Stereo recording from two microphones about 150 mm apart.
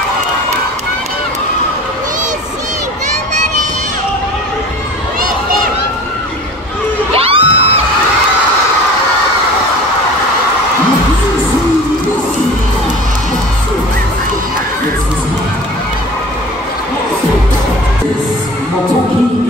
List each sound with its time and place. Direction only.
7.2 s music: 40° right (ahead or behind)